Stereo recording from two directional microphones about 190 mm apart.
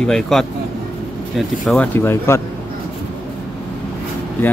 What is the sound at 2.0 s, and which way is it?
Speech, 10° left (ahead or behind).